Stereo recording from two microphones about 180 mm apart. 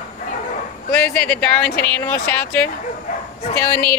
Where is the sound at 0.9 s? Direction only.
10° left (ahead or behind).